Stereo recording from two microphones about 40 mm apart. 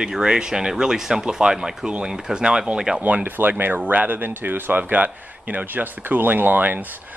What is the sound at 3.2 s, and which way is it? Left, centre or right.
Speech, right.